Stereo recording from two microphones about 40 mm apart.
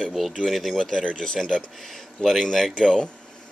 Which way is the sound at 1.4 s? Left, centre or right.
Centre.